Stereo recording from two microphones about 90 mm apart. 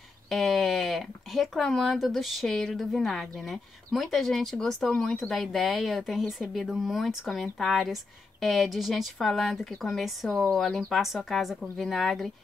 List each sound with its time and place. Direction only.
0.3 s speech: centre (ahead or behind)